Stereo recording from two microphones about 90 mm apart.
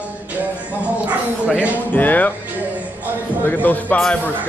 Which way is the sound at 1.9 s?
20° left (ahead or behind).